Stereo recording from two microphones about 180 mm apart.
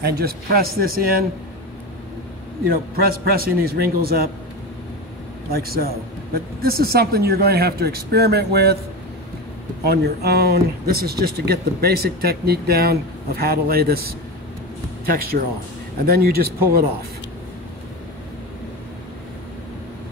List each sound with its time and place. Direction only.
0.0 s speech: 60° right (ahead or behind)
2.7 s speech: 55° right (ahead or behind)
5.5 s speech: 60° right (ahead or behind)
9.8 s speech: 65° right (ahead or behind)